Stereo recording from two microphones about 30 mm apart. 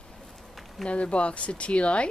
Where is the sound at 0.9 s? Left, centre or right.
Left.